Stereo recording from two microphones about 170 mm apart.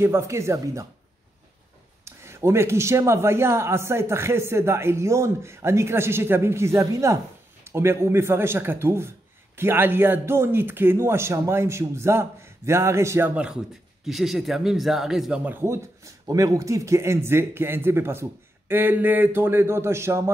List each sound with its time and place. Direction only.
0.0 s speech: 15° right (ahead or behind)
2.0 s speech: 15° right (ahead or behind)